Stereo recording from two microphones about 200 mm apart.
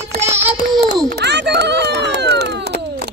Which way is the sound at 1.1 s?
55° right (ahead or behind).